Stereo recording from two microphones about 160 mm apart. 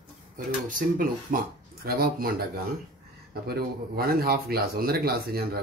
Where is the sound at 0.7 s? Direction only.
60° right (ahead or behind).